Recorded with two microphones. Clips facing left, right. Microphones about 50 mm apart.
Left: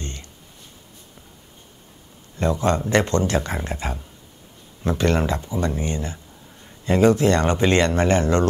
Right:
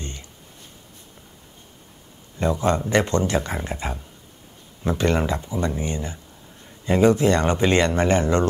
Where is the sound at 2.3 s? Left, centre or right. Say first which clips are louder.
Even; centre.